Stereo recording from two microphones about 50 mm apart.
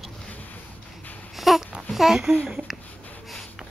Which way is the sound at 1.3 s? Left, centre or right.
Centre.